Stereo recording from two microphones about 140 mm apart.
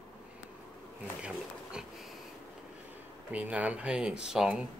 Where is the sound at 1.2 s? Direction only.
5° right (ahead or behind).